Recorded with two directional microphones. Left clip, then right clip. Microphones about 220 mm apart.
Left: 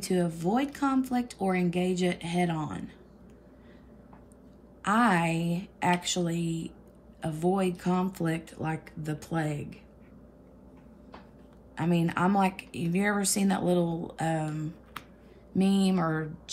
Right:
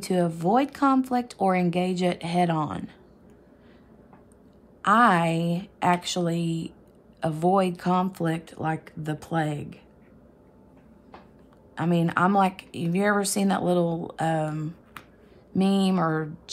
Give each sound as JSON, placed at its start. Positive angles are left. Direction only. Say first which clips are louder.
{"t": 0.0, "sound": "speech", "louder": "right 4 dB", "side_deg": -15}
{"t": 4.8, "sound": "speech", "louder": "right 6 dB", "side_deg": -10}
{"t": 11.7, "sound": "speech", "louder": "right 4 dB", "side_deg": -10}